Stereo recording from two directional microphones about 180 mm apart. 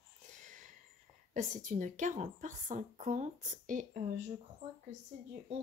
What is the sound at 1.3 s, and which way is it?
Speech, 45° right (ahead or behind).